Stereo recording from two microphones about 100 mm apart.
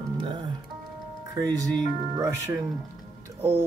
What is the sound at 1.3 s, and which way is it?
Speech, 35° right (ahead or behind).